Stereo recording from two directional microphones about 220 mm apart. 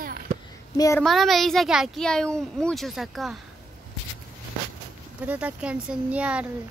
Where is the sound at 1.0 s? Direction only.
Centre (ahead or behind).